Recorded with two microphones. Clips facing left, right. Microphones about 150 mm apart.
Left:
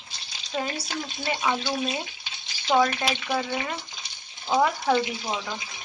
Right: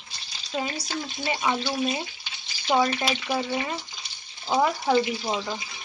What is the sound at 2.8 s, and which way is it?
Speech, 15° right (ahead or behind).